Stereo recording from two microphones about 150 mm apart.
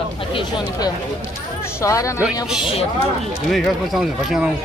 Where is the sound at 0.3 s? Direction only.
25° left (ahead or behind).